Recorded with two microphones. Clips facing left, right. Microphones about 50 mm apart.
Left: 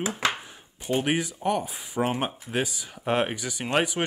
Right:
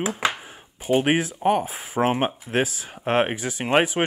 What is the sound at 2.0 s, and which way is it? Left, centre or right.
Speech, centre.